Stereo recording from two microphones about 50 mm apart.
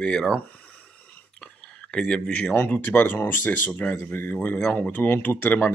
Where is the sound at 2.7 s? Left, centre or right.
Left.